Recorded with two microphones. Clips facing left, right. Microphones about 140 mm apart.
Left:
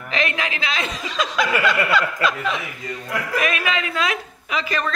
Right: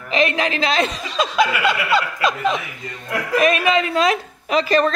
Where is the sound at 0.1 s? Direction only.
25° right (ahead or behind).